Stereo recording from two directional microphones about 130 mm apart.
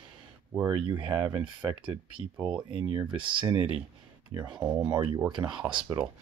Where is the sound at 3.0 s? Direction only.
40° right (ahead or behind).